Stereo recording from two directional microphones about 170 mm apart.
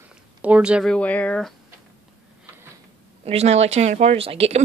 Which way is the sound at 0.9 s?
10° left (ahead or behind).